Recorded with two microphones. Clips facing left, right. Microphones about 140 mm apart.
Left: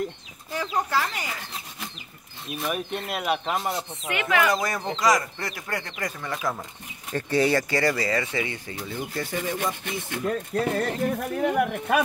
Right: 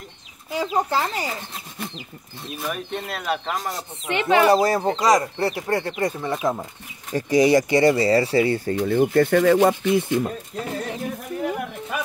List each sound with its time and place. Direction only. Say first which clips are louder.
0.7 s speech: right 3 dB; 30° right (ahead or behind)
2.6 s speech: even; 10° left (ahead or behind)
4.1 s speech: right 6 dB; 30° right (ahead or behind)
7.1 s speech: right 5 dB; 10° right (ahead or behind); by 8.7 s 40° right (ahead or behind)
8.7 s speech: right 15 dB; 55° right (ahead or behind)
10.7 s speech: left 1 dB; 60° left (ahead or behind)